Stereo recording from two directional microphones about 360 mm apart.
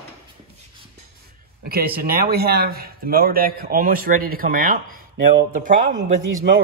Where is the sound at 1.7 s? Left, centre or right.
Right.